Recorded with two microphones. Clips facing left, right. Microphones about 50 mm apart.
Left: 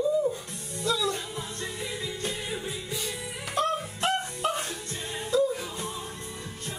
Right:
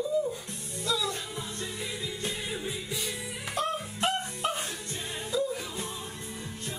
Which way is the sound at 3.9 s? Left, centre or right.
Centre.